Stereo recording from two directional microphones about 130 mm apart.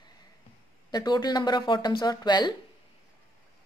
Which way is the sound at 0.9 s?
30° left (ahead or behind).